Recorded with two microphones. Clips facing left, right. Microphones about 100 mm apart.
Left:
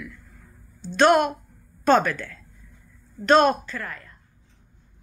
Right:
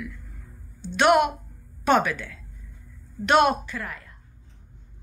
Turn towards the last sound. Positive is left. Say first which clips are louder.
# left 1 dB
turn(degrees=-15)  # may be behind; listen again after turning